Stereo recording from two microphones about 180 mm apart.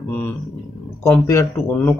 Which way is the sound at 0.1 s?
10° left (ahead or behind).